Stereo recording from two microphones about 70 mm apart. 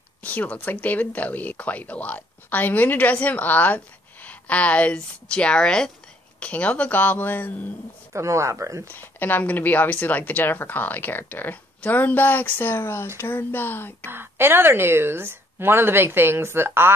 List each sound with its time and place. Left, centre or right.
0.2 s speech: left
8.1 s speech: right
8.8 s speech: left
14.0 s a woman's voice: right